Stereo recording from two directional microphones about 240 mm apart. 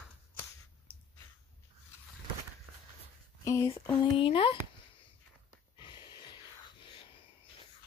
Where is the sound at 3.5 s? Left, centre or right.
Centre.